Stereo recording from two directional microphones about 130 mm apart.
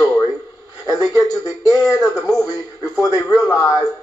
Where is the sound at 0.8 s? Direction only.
30° left (ahead or behind).